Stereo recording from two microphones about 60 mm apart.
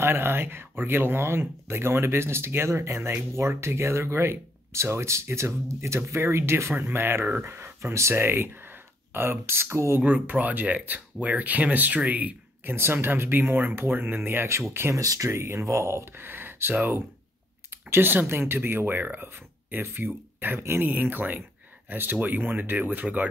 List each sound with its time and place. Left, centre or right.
0.0 s speech: right
8.1 s speech: right
10.0 s speech: right
12.7 s speech: right
15.0 s speech: right